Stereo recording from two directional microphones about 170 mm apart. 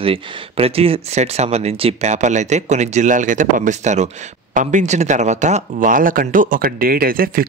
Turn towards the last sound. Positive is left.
turn(degrees=-60)  # may be behind; listen again after turning